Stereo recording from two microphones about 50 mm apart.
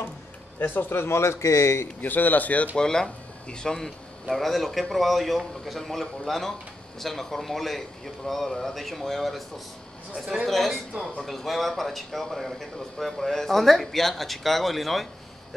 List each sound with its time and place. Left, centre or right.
0.6 s a man's voice: left
0.9 s speech: left
2.0 s a man's voice: left
2.7 s speech: centre